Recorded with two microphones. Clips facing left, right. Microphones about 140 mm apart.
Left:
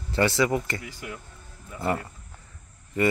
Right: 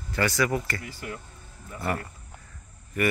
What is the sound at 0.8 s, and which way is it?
Speech, 5° left (ahead or behind).